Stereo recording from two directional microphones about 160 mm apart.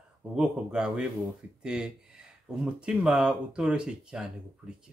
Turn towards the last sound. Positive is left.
turn(degrees=-5)  # may be behind; listen again after turning